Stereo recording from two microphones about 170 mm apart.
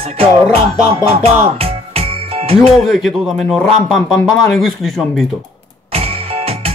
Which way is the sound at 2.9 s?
Centre (ahead or behind).